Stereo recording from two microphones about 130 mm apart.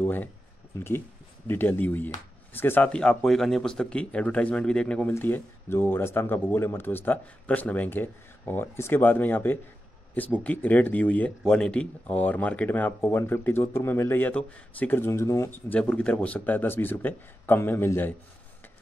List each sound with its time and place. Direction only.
0.0 s a sound: 15° left (ahead or behind)
0.7 s speech: 20° left (ahead or behind)
15.7 s speech: 10° left (ahead or behind)